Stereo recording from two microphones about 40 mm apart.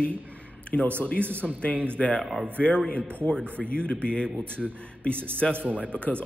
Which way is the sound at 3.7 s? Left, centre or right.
Left.